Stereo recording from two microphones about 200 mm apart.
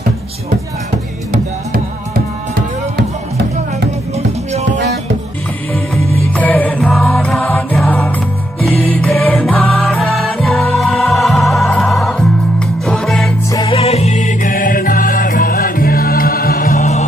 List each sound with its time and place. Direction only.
1.3 s music: 45° right (ahead or behind)
3.0 s music: 55° right (ahead or behind)
6.3 s music: 10° left (ahead or behind)
13.5 s music: 25° left (ahead or behind); by 17.0 s 40° left (ahead or behind)